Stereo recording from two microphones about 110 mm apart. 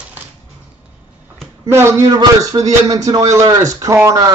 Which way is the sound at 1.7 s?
25° right (ahead or behind).